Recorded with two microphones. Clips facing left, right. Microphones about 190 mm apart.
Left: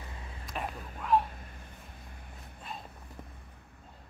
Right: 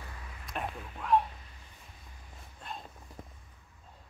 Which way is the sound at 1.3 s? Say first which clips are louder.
Left 5 dB; 50° left (ahead or behind).